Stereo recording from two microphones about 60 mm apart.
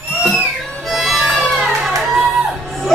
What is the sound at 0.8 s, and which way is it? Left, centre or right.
Music, centre.